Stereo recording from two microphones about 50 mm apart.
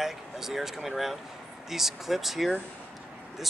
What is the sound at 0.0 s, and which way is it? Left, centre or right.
Speech, centre.